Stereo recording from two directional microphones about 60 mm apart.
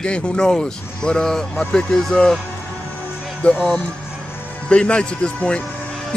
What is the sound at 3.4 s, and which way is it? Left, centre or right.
Speech, centre.